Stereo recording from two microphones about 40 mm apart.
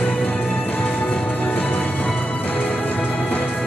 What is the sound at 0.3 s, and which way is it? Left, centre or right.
Music, left.